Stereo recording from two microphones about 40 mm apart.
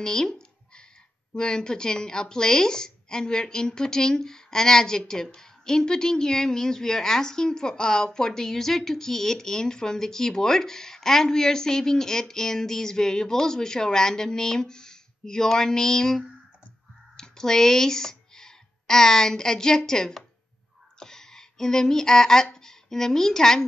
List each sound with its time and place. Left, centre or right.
0.0 s a sound: centre
1.3 s a woman's voice: left
17.2 s speech: centre